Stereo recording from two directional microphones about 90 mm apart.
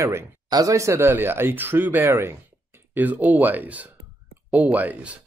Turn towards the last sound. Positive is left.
turn(degrees=-15)  # may be behind; listen again after turning